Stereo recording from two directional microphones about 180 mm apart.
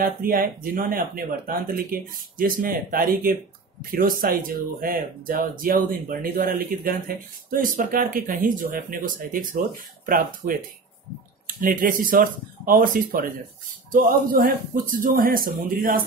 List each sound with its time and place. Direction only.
0.0 s speech: 55° right (ahead or behind)